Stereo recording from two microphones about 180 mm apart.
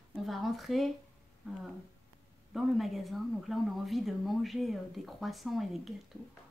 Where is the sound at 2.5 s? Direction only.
Centre (ahead or behind).